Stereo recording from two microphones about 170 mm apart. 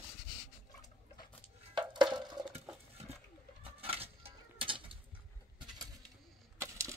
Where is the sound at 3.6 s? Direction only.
35° right (ahead or behind).